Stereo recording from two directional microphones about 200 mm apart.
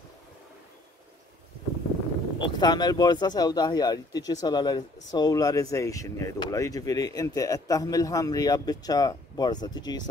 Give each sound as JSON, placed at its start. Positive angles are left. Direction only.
{"t": 2.3, "sound": "speech", "side_deg": 20}